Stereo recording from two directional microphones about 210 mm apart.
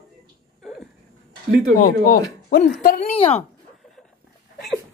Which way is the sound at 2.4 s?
45° left (ahead or behind).